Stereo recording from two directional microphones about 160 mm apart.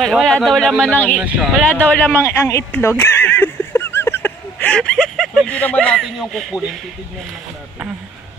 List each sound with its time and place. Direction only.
0.0 s speech: centre (ahead or behind)
1.2 s speech: 5° right (ahead or behind)
1.8 s a sound: 15° left (ahead or behind); by 6.8 s centre (ahead or behind)